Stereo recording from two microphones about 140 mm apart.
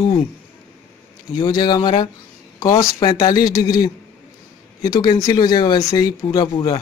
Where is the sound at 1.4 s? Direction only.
30° left (ahead or behind).